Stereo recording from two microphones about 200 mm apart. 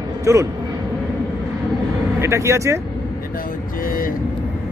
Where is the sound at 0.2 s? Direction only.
15° right (ahead or behind).